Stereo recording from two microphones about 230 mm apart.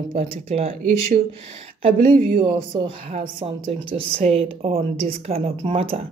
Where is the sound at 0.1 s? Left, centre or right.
Right.